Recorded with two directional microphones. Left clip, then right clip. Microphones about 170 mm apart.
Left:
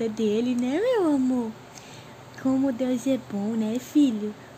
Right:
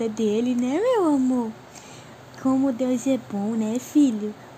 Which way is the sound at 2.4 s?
10° right (ahead or behind).